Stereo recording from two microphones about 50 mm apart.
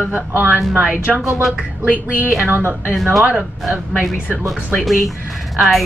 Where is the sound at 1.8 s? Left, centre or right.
Right.